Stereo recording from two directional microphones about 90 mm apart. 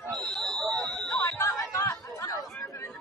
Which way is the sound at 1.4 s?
40° left (ahead or behind).